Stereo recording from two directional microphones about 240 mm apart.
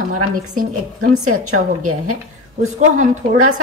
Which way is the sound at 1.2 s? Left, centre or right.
Right.